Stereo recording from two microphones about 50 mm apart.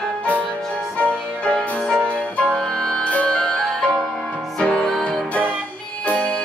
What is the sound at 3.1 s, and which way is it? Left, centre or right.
Music, left.